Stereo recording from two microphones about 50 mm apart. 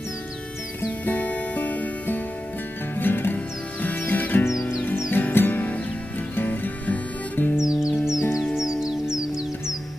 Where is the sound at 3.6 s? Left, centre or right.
Left.